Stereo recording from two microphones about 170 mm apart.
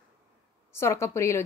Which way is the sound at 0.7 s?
15° left (ahead or behind).